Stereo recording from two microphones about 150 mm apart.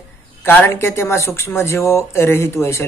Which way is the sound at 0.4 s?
15° left (ahead or behind).